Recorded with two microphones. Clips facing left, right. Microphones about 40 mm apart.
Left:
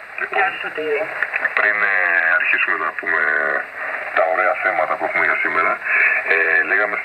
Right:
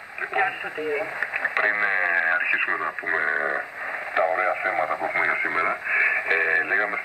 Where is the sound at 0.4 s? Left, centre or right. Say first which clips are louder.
Left 5 dB; left.